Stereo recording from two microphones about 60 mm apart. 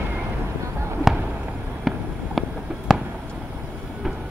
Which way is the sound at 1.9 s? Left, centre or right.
Centre.